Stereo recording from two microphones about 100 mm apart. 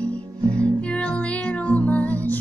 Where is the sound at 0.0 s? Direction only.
10° left (ahead or behind).